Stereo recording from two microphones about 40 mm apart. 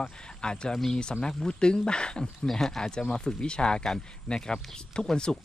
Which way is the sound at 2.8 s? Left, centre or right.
Left.